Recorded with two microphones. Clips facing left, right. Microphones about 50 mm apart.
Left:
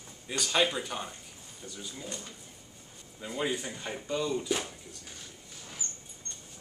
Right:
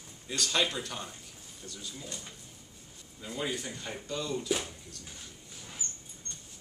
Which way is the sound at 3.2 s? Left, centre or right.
Centre.